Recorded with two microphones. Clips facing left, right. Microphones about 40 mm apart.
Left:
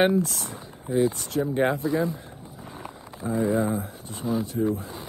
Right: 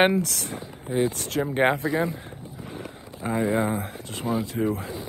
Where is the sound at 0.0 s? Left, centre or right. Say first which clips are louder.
Right 1 dB; right.